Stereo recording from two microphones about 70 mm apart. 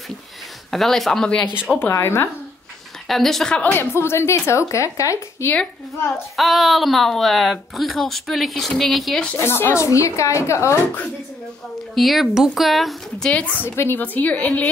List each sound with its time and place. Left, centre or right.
0.7 s a woman's voice: centre
1.8 s a woman's voice: left
3.1 s a woman's voice: centre
3.6 s a woman's voice: left
6.3 s a woman's voice: centre
9.4 s a woman's voice: left
9.8 s a woman's voice: left
11.9 s a woman's voice: centre
13.3 s speech: left
13.7 s speech: left